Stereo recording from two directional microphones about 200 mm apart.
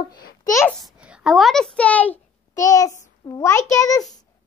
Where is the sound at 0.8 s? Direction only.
5° right (ahead or behind); by 3.6 s 15° left (ahead or behind).